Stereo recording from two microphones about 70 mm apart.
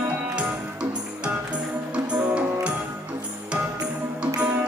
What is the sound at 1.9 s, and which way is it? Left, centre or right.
Music, centre.